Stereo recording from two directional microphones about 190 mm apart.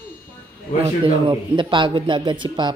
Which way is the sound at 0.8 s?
25° right (ahead or behind).